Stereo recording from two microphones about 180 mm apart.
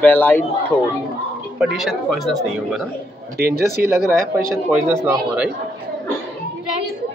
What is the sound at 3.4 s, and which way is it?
Speech, 60° right (ahead or behind).